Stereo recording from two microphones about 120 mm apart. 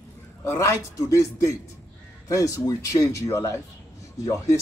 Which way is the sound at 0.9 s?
30° left (ahead or behind).